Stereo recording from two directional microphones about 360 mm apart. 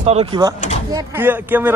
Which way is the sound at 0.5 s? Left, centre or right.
Centre.